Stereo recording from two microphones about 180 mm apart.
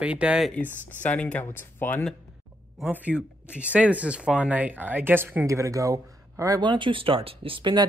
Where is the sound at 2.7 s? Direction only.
5° right (ahead or behind).